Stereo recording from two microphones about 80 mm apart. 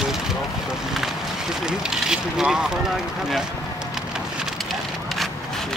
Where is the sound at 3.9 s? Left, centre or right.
Centre.